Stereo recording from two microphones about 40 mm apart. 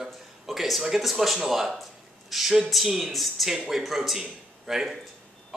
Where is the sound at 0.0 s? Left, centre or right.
Centre.